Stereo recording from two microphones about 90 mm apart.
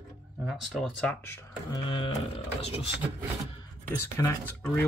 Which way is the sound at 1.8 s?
70° left (ahead or behind).